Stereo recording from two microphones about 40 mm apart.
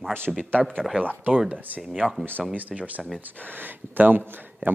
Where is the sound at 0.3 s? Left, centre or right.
Centre.